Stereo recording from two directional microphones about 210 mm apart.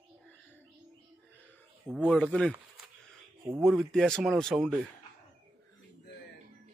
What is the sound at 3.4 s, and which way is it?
Speech, 20° right (ahead or behind).